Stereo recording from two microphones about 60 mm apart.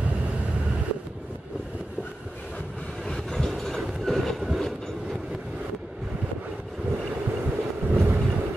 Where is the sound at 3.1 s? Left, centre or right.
Centre.